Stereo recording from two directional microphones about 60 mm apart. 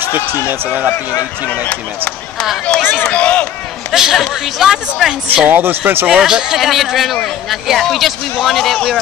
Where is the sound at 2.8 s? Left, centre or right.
Left.